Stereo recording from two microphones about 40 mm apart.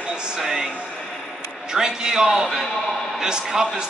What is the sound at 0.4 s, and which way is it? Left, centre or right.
Music, centre.